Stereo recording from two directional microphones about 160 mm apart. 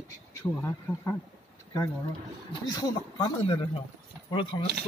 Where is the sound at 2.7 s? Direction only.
25° left (ahead or behind).